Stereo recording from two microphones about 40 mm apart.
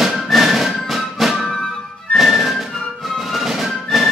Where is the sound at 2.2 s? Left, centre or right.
Centre.